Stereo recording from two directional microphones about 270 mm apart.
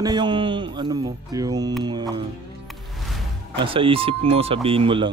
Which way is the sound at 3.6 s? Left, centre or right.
Centre.